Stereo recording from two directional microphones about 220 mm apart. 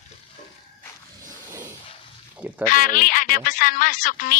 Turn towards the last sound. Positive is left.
turn(degrees=40)  # may be behind; listen again after turning